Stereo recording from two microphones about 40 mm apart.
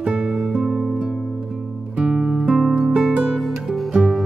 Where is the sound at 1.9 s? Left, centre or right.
Right.